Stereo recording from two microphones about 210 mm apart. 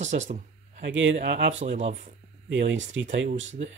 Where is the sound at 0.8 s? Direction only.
60° right (ahead or behind).